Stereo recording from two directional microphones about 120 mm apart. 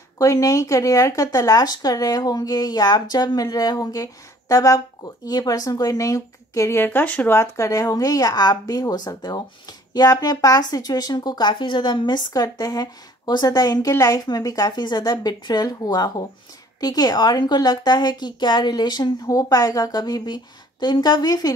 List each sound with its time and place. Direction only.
0.2 s speech: 25° left (ahead or behind)